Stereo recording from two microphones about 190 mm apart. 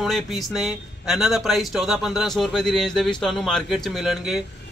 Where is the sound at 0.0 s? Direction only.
Centre (ahead or behind).